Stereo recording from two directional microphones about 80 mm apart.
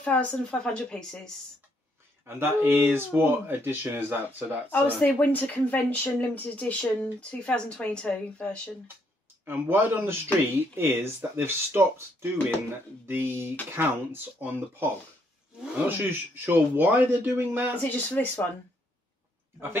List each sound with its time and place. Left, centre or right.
0.0 s speech: centre
2.2 s speech: right
4.6 s speech: left
9.4 s speech: right
15.9 s speech: right
17.8 s speech: left